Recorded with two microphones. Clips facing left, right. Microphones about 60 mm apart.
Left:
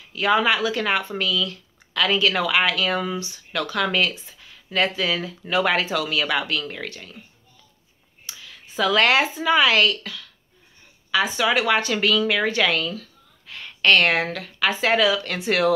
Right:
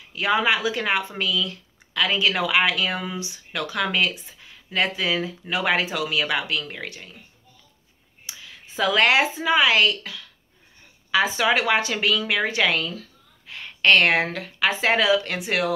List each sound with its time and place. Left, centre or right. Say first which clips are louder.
0.1 s speech: left 2 dB; centre
8.3 s a sound: even; right
9.0 s a woman's voice: even; centre
15.3 s speech: left 4 dB; centre